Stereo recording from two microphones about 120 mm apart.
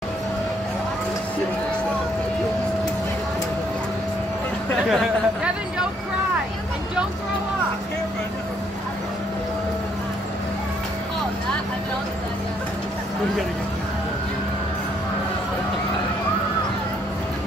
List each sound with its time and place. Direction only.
4.8 s chatter: 5° right (ahead or behind)